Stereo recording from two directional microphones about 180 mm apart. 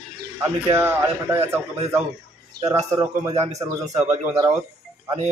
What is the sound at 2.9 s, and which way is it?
A man's voice, 15° right (ahead or behind).